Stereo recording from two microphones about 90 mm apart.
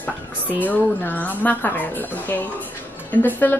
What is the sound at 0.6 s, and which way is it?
Speech, 20° left (ahead or behind).